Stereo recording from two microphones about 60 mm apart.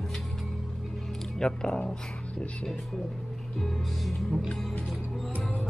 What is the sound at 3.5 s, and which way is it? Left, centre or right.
Speech, centre.